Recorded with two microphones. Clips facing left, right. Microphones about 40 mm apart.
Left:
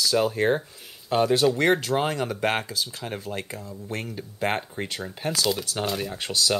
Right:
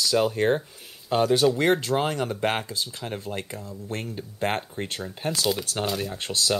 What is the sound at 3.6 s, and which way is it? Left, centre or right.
Speech, left.